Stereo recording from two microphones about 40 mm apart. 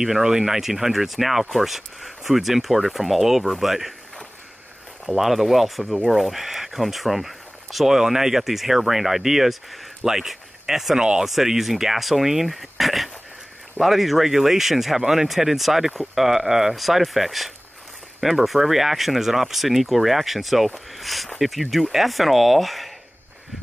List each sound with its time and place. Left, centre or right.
0.0 s speech: centre
5.0 s speech: centre
11.0 s speech: centre
11.2 s speech: centre